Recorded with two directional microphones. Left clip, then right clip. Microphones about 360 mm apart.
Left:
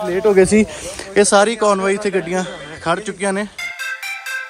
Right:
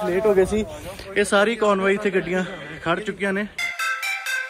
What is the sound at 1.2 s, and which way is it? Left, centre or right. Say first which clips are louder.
Speech: left 4 dB; centre.